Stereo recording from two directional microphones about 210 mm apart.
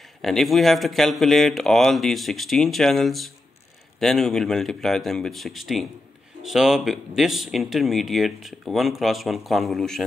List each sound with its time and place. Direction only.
0.2 s speech: centre (ahead or behind)